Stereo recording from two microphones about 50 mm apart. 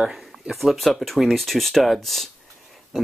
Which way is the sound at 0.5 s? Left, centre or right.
Centre.